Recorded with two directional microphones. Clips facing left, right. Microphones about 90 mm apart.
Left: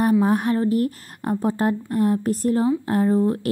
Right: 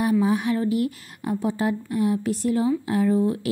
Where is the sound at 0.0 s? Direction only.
45° left (ahead or behind).